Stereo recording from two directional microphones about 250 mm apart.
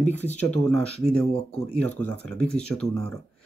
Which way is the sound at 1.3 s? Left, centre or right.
Left.